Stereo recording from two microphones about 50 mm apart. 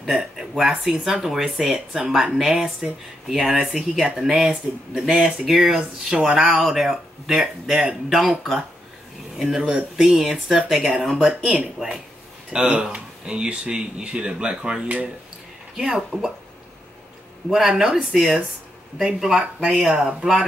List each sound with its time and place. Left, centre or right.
0.1 s speech: centre
5.8 s speech: centre
9.6 s speech: centre
12.5 s speech: right
17.5 s speech: centre